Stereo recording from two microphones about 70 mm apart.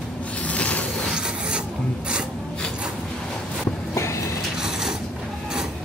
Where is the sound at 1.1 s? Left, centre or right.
Centre.